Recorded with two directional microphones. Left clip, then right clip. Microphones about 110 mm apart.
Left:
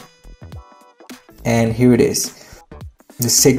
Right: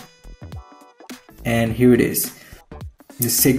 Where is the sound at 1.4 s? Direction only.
45° left (ahead or behind).